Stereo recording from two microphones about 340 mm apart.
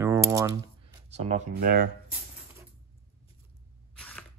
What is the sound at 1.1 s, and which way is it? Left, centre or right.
Speech, centre.